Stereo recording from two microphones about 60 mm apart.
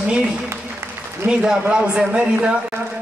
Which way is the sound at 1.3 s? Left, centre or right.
Right.